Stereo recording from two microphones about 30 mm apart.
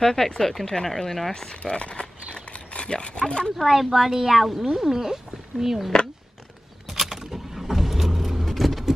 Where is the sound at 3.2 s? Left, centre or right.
Left.